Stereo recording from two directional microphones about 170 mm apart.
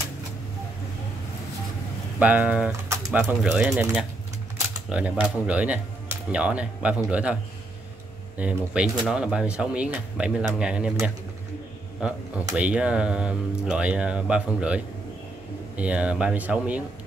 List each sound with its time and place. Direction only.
2.1 s speech: 10° right (ahead or behind)
4.8 s speech: 5° right (ahead or behind)
8.4 s speech: 5° right (ahead or behind)
12.0 s speech: 5° right (ahead or behind)